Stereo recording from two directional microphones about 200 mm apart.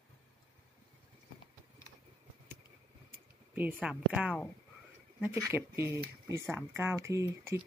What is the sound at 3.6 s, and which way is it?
A woman's voice, 5° right (ahead or behind).